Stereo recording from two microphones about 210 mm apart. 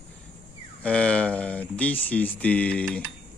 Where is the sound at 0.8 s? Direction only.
5° left (ahead or behind).